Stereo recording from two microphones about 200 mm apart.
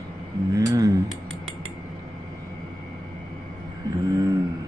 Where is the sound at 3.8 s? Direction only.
20° right (ahead or behind).